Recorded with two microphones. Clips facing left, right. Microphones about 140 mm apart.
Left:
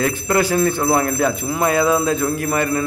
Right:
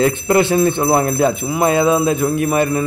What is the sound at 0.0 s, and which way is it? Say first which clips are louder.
Speech: right 4 dB; 25° right (ahead or behind).